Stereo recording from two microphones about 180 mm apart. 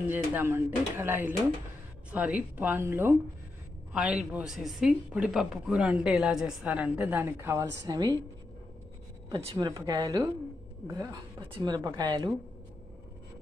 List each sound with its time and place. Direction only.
0.1 s a woman's voice: 10° right (ahead or behind)
9.3 s a woman's voice: 25° right (ahead or behind)